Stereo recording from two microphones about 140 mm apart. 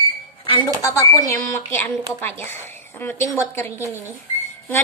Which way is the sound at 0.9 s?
25° left (ahead or behind).